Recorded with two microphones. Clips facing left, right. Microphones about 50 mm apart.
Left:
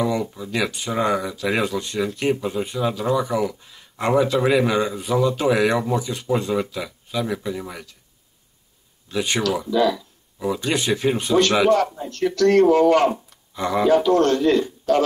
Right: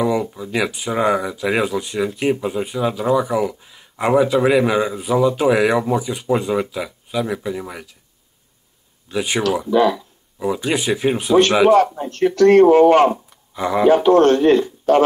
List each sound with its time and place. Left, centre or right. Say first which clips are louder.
0.0 s speech: right 3 dB; centre
9.1 s speech: right 2 dB; centre
9.7 s speech: right 4 dB; right
10.4 s speech: right 2 dB; centre
11.8 s speech: right 5 dB; right
13.1 s a sound: right 3 dB; centre
13.8 s speech: right 5 dB; right